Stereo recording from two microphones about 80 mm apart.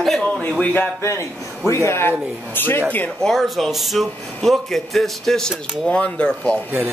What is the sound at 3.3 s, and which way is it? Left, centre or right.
Speech, centre.